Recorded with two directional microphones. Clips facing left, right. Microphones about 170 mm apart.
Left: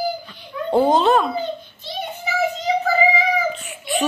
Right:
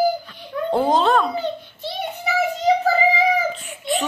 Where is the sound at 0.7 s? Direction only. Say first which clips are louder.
Left 2 dB; centre (ahead or behind).